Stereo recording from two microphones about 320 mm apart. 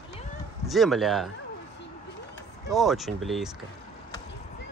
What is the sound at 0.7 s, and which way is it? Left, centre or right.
Speech, centre.